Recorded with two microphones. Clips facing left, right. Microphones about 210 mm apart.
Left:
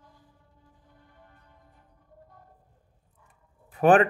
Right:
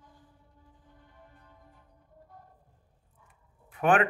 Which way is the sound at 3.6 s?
35° left (ahead or behind).